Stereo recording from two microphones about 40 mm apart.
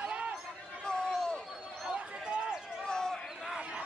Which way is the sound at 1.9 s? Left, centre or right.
Right.